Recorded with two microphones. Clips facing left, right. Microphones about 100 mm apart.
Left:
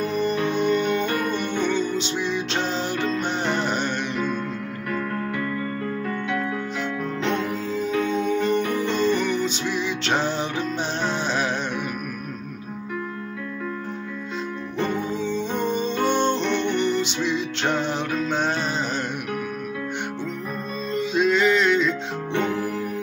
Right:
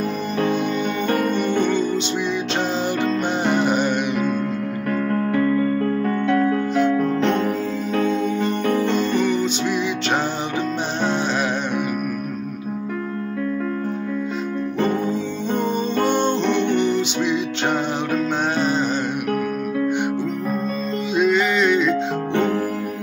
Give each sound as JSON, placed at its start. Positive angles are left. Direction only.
{"t": 0.6, "sound": "music", "side_deg": 0}
{"t": 1.0, "sound": "music", "side_deg": -40}
{"t": 1.7, "sound": "music", "side_deg": 0}
{"t": 5.3, "sound": "music", "side_deg": -40}
{"t": 9.2, "sound": "music", "side_deg": 0}
{"t": 16.1, "sound": "music", "side_deg": 0}
{"t": 20.9, "sound": "music", "side_deg": 0}
{"t": 22.3, "sound": "music", "side_deg": -45}